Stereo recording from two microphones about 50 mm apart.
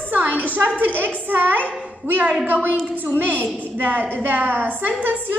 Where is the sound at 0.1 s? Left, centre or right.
Right.